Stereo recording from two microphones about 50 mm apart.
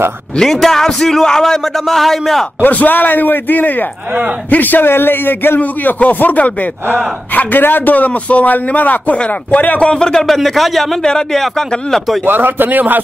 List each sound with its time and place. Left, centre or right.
0.4 s a man's voice: centre
2.6 s a man's voice: left
9.8 s a man's voice: centre
10.2 s speech: centre
11.1 s a man's voice: centre
12.3 s speech: right